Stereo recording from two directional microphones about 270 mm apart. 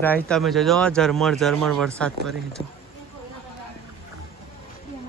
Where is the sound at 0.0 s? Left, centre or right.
Centre.